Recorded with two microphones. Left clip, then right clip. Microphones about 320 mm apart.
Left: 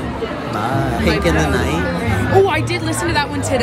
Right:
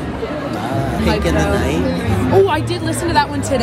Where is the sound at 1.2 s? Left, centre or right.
Centre.